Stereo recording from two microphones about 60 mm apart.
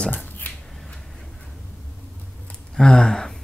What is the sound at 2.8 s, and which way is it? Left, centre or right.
Speech, centre.